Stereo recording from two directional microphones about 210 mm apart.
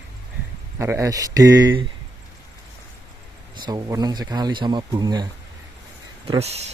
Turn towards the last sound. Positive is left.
turn(degrees=-30)  # may be behind; listen again after turning